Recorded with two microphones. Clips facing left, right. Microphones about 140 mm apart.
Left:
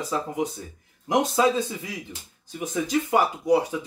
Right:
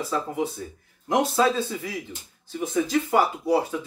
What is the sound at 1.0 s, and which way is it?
Speech, 15° left (ahead or behind).